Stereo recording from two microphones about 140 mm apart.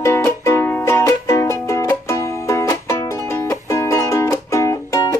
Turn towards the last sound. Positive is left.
turn(degrees=20)  # may be behind; listen again after turning